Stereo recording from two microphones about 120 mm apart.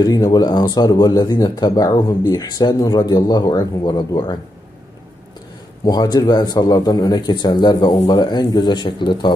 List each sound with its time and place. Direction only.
0.0 s speech: 35° left (ahead or behind)
5.9 s speech: 35° left (ahead or behind)